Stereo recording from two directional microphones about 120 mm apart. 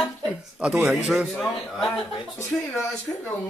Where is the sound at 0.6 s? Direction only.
10° right (ahead or behind).